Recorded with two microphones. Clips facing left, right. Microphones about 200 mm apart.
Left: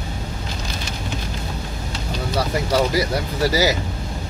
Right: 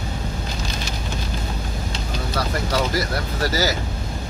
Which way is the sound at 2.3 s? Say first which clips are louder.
Left 4 dB; 15° left (ahead or behind).